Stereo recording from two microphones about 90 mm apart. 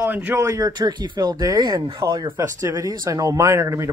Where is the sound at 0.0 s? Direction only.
20° right (ahead or behind).